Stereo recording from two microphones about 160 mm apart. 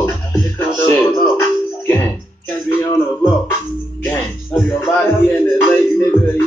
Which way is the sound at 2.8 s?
15° left (ahead or behind).